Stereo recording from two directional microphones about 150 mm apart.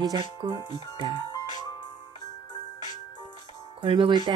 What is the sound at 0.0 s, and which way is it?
Speech, 30° right (ahead or behind).